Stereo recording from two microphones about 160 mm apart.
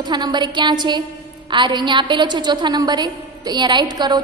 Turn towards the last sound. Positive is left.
turn(degrees=-25)  # may be behind; listen again after turning